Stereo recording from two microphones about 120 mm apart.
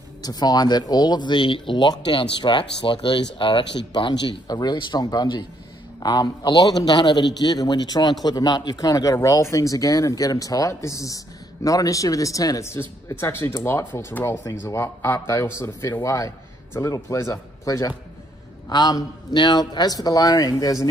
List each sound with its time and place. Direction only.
0.2 s a man's voice: 35° left (ahead or behind)